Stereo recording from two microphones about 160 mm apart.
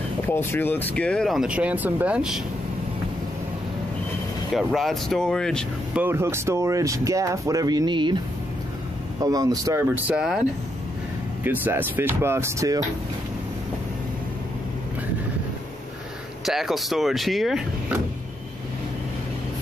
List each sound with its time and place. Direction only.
0.3 s speech: 15° left (ahead or behind); by 2.4 s 5° right (ahead or behind)
4.6 s speech: centre (ahead or behind)
5.9 s speech: 15° right (ahead or behind)
9.2 s speech: 25° right (ahead or behind); by 10.4 s 5° right (ahead or behind)
11.4 s speech: 10° right (ahead or behind)
16.4 s speech: centre (ahead or behind)